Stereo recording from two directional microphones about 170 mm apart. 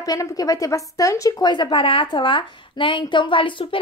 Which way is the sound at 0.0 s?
20° left (ahead or behind).